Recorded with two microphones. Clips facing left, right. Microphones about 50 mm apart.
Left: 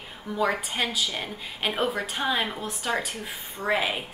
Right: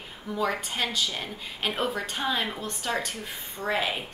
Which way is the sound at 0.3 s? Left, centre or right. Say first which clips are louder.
Left 2 dB; centre.